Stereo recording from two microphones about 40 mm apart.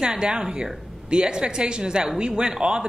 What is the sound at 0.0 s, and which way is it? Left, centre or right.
Speech, right.